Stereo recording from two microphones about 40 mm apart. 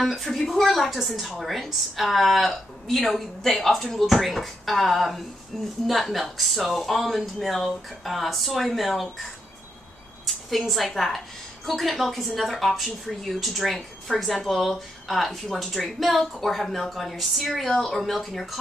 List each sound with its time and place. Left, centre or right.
0.0 s speech: centre